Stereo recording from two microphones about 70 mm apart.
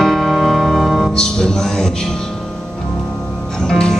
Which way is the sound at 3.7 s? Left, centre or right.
Centre.